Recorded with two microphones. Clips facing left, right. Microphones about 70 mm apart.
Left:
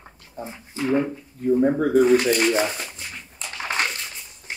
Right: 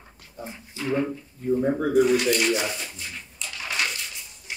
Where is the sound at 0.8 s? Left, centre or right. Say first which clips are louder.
Left 4 dB; left.